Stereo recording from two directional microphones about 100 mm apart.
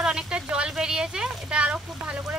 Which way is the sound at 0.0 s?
5° right (ahead or behind).